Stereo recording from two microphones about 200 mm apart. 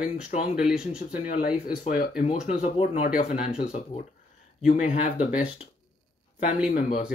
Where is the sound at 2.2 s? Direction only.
30° left (ahead or behind).